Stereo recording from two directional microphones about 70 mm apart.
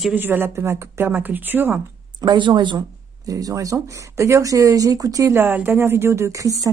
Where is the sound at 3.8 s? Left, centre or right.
Right.